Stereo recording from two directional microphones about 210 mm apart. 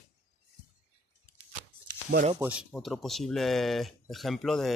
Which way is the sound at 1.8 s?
45° right (ahead or behind).